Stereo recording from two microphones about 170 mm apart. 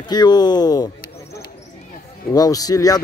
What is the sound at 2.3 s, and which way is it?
Speech, 20° left (ahead or behind).